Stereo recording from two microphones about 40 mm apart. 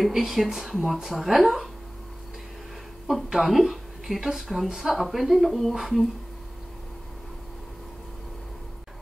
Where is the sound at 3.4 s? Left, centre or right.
Right.